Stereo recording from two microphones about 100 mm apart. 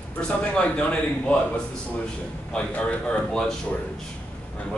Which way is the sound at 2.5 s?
10° left (ahead or behind).